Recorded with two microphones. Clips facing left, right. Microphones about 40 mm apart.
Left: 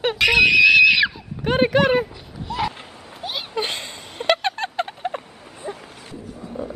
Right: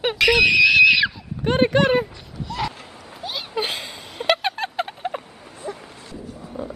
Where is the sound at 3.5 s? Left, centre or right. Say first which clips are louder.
Right 1 dB; centre.